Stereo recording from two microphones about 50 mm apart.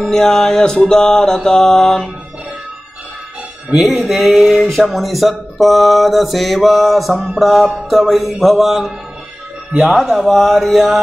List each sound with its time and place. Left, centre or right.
0.0 s mantra: centre
3.7 s mantra: centre
9.7 s speech: centre
9.9 s mantra: centre